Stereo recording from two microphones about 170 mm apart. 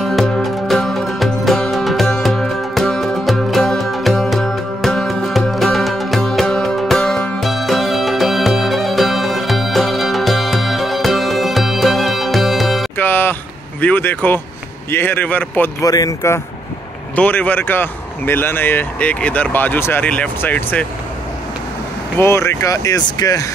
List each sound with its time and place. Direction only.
0.0 s music: centre (ahead or behind)
12.9 s a sound: 10° left (ahead or behind)
14.9 s speech: 10° left (ahead or behind)
15.9 s speech: 20° left (ahead or behind)
22.2 s speech: 15° left (ahead or behind)